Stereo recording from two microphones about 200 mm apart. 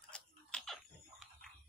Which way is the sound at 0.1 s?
5° left (ahead or behind).